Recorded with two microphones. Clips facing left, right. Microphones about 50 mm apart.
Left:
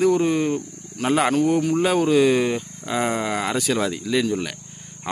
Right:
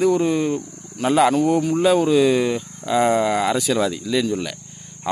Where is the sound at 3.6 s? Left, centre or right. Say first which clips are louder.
Right 2 dB; left.